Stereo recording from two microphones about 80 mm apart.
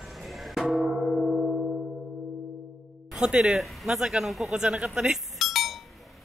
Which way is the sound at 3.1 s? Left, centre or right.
Centre.